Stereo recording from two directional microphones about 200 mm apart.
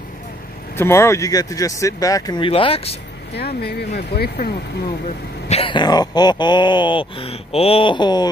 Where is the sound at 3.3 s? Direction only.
55° left (ahead or behind).